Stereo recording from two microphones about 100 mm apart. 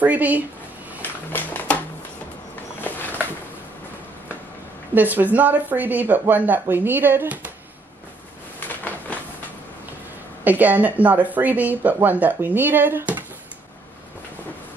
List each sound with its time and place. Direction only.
0.0 s speech: 15° right (ahead or behind)
1.3 s music: 20° left (ahead or behind)
2.8 s a sound: 20° left (ahead or behind)
4.9 s speech: 15° right (ahead or behind)
8.5 s a sound: 15° left (ahead or behind)
10.4 s speech: 15° right (ahead or behind)